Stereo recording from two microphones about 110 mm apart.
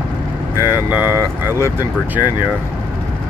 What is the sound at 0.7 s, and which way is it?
Speech, 15° right (ahead or behind).